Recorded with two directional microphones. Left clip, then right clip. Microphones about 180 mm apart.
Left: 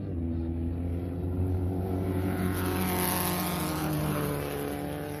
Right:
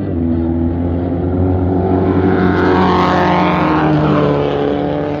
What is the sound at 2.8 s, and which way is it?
Vehicle, 75° left (ahead or behind).